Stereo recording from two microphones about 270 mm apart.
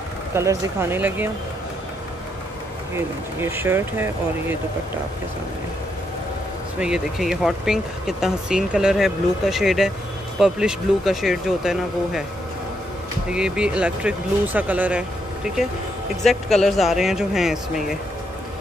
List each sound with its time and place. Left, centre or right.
0.3 s speech: centre
3.3 s speech: centre
6.8 s speech: centre
13.3 s speech: centre